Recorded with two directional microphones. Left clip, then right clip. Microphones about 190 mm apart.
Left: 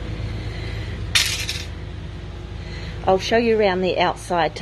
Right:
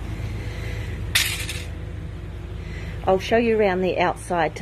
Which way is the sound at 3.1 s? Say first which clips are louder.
Left 2 dB; centre (ahead or behind).